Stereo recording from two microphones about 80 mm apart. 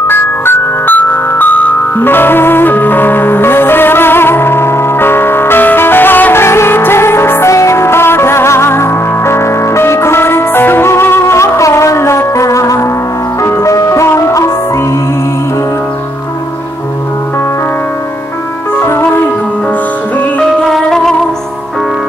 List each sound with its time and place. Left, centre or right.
0.1 s music: left
18.8 s music: left
20.7 s music: centre